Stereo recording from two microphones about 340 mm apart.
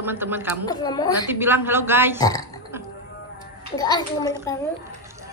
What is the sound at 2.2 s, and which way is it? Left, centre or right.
Speech, centre.